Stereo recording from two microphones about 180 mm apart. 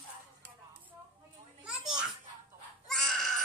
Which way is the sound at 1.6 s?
5° right (ahead or behind).